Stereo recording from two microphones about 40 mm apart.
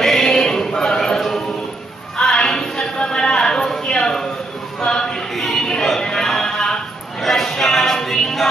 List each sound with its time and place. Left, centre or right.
0.0 s chant: centre
2.2 s a sound: centre
7.9 s choir: centre